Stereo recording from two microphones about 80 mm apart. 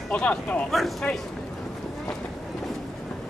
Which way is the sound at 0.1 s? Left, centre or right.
Centre.